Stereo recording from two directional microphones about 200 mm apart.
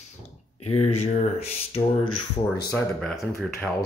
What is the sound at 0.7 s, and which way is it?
Speech, 30° left (ahead or behind).